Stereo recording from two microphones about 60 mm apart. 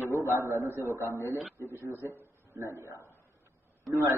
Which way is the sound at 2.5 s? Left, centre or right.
Right.